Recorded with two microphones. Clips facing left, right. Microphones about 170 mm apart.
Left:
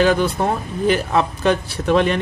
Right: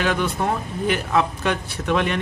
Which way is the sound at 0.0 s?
35° left (ahead or behind).